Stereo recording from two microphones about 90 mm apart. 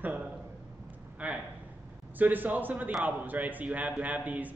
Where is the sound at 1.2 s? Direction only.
15° right (ahead or behind).